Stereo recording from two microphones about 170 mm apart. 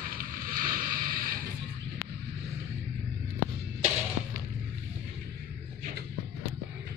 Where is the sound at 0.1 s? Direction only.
55° right (ahead or behind).